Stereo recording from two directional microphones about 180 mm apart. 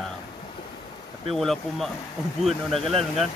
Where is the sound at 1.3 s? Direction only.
Centre (ahead or behind).